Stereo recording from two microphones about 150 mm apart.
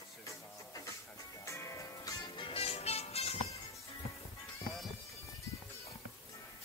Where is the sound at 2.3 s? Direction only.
40° left (ahead or behind).